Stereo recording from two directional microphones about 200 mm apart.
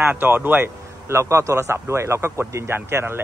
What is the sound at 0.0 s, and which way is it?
A man's voice, 10° right (ahead or behind).